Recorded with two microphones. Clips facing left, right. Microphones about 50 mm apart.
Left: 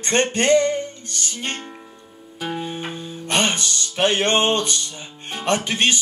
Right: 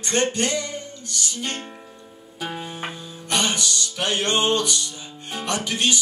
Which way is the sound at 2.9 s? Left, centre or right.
Left.